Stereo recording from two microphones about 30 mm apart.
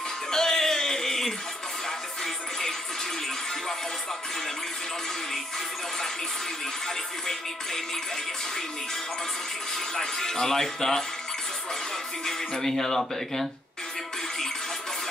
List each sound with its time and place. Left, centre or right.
0.3 s music: centre
7.2 s music: centre
9.9 s speech: centre
12.3 s speech: centre